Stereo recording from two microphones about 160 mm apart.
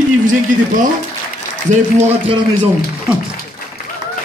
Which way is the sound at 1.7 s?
45° right (ahead or behind).